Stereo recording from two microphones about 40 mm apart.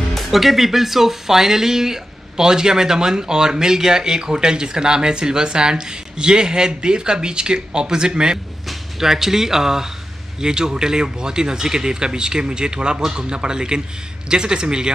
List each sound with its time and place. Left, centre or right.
0.1 s speech: centre; by 8.4 s right
8.6 s speech: centre